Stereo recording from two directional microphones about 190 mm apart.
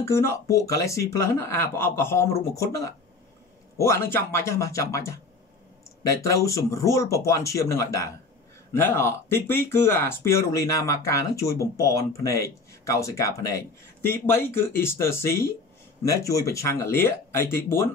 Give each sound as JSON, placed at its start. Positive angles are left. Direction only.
{"t": 0.0, "sound": "speech", "side_deg": 15}